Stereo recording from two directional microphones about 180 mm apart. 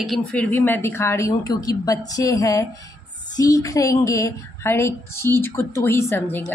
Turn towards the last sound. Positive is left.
turn(degrees=10)  # may be behind; listen again after turning